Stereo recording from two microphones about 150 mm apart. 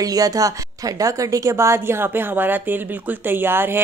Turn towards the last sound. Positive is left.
turn(degrees=-15)  # may be behind; listen again after turning